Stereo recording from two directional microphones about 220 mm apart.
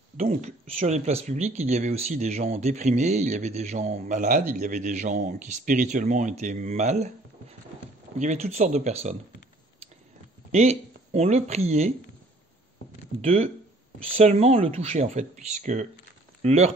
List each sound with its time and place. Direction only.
0.2 s speech: 30° right (ahead or behind)
8.2 s speech: 30° right (ahead or behind)
10.5 s speech: 30° right (ahead or behind)
13.2 s speech: 30° right (ahead or behind)